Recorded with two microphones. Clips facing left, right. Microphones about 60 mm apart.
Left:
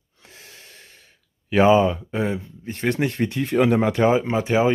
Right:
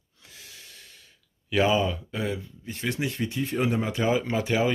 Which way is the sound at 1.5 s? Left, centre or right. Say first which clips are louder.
Left 7 dB; left.